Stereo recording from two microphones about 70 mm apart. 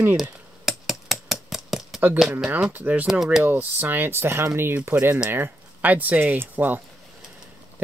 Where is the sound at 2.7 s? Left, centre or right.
Right.